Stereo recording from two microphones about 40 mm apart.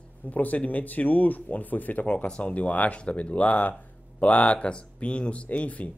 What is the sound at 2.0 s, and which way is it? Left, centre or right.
Speech, left.